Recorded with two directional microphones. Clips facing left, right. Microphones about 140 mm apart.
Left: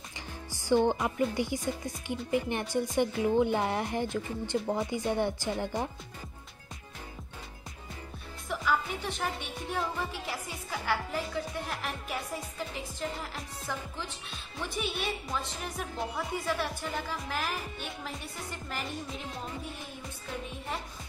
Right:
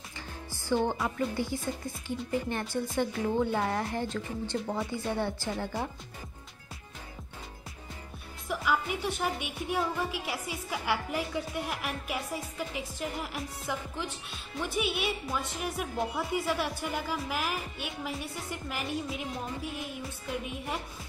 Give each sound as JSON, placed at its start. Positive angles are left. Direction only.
{"t": 0.5, "sound": "speech", "side_deg": 15}
{"t": 8.5, "sound": "a woman's voice", "side_deg": -10}